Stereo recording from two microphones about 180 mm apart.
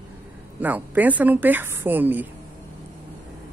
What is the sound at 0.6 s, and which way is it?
Speech, 10° right (ahead or behind).